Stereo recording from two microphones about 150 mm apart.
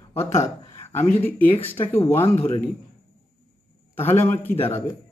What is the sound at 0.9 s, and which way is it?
Speech, 15° left (ahead or behind).